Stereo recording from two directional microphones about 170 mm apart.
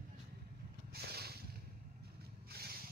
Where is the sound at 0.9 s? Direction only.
65° right (ahead or behind).